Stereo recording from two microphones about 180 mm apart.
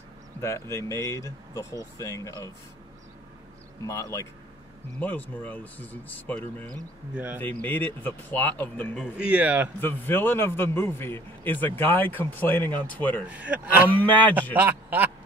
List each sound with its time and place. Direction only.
0.4 s speech: 15° left (ahead or behind)
3.8 s speech: 15° left (ahead or behind)
9.2 s a man's voice: 5° right (ahead or behind)
9.8 s speech: 10° left (ahead or behind)
13.3 s a man's voice: 5° right (ahead or behind)
14.0 s speech: 10° left (ahead or behind)
14.6 s a man's voice: 10° right (ahead or behind)